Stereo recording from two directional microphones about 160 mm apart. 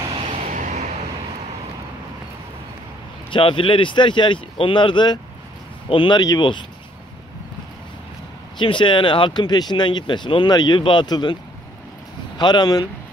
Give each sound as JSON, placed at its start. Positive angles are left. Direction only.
{"t": 0.1, "sound": "vehicle", "side_deg": -45}
{"t": 3.3, "sound": "speech", "side_deg": 35}
{"t": 8.5, "sound": "speech", "side_deg": 30}
{"t": 12.4, "sound": "speech", "side_deg": 25}